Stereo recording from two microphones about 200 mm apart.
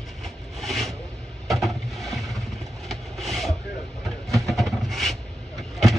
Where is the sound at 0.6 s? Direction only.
Centre (ahead or behind).